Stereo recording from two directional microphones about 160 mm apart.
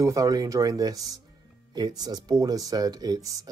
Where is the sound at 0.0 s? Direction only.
20° right (ahead or behind).